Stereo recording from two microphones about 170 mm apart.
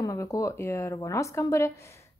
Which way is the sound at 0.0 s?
20° left (ahead or behind).